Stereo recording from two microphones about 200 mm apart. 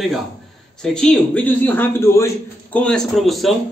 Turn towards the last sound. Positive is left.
turn(degrees=0)  # may be behind; listen again after turning